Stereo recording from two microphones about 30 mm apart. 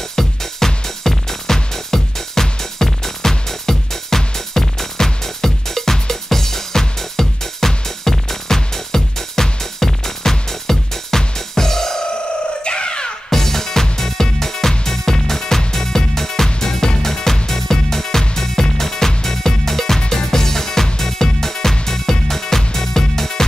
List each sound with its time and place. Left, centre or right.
0.1 s music: centre
12.6 s a sound: left
13.3 s music: centre